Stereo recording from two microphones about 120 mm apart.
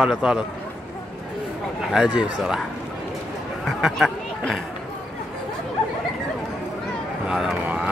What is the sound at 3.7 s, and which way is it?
Speech, 5° right (ahead or behind).